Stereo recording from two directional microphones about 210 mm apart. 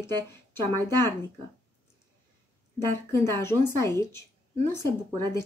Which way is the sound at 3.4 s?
15° left (ahead or behind).